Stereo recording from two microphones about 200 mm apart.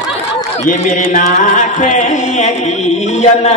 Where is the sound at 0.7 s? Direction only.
40° left (ahead or behind).